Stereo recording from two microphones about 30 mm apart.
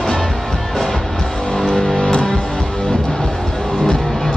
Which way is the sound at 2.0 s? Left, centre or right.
Left.